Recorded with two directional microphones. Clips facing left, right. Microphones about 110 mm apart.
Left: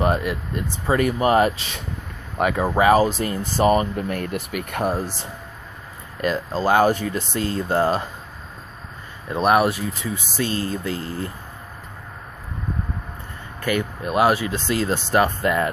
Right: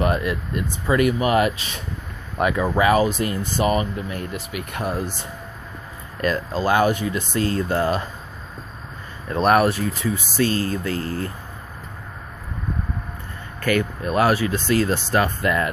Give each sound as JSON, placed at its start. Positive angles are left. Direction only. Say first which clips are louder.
{"t": 0.0, "sound": "speech", "louder": "even", "side_deg": 25}
{"t": 0.8, "sound": "speech", "louder": "even", "side_deg": 35}
{"t": 2.5, "sound": "speech", "louder": "left 2 dB", "side_deg": 35}
{"t": 4.9, "sound": "speech", "louder": "even", "side_deg": 35}
{"t": 6.5, "sound": "speech", "louder": "left 2 dB", "side_deg": 30}
{"t": 9.3, "sound": "speech", "louder": "right 1 dB", "side_deg": 10}
{"t": 13.6, "sound": "speech", "louder": "right 2 dB", "side_deg": 20}